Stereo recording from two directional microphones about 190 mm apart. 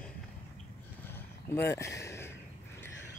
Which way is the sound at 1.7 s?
15° left (ahead or behind).